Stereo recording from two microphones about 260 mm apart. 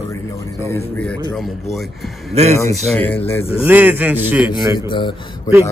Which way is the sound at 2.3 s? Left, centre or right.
Right.